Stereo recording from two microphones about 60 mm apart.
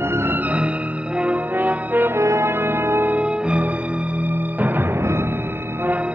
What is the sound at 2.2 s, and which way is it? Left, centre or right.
Music, right.